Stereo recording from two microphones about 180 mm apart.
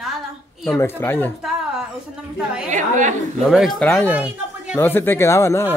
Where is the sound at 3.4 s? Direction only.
Centre (ahead or behind).